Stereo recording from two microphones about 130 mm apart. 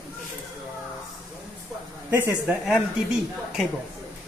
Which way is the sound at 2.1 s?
15° right (ahead or behind).